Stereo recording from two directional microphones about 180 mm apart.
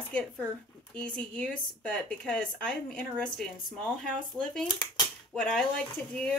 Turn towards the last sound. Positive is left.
turn(degrees=5)  # may be behind; listen again after turning